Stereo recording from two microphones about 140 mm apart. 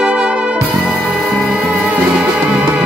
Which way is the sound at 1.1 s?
5° right (ahead or behind).